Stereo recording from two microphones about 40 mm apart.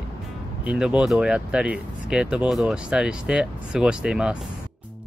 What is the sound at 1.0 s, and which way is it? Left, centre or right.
Speech, centre.